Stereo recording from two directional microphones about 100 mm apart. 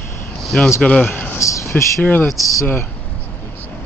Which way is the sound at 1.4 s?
30° left (ahead or behind).